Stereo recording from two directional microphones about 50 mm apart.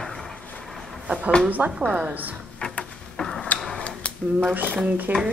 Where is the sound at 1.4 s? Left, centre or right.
Right.